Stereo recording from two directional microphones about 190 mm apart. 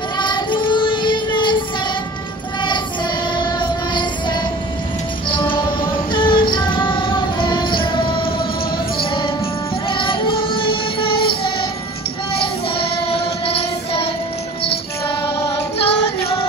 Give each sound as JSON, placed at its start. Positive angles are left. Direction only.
{"t": 0.2, "sound": "child singing", "side_deg": 25}
{"t": 3.3, "sound": "music", "side_deg": 25}
{"t": 12.4, "sound": "child singing", "side_deg": 30}
{"t": 14.6, "sound": "music", "side_deg": 30}
{"t": 15.2, "sound": "music", "side_deg": 15}
{"t": 15.8, "sound": "music", "side_deg": 30}